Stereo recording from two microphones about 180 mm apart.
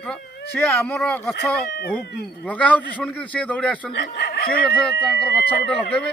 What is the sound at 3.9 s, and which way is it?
Speech, 60° left (ahead or behind).